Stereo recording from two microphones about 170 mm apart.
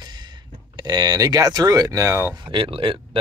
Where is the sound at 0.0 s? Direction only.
25° right (ahead or behind).